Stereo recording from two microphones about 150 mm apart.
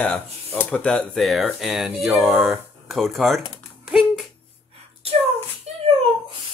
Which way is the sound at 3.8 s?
Centre (ahead or behind).